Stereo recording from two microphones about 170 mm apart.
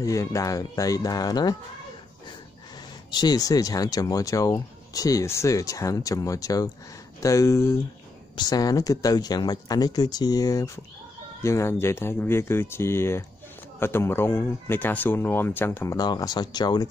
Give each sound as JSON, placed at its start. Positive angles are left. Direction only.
{"t": 0.0, "sound": "speech", "side_deg": 20}
{"t": 3.1, "sound": "speech", "side_deg": 25}